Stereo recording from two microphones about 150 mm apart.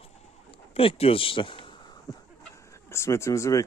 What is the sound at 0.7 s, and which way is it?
Speech, 40° left (ahead or behind).